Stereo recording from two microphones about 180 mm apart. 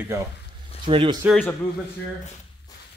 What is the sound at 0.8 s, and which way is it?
Speech, 25° right (ahead or behind).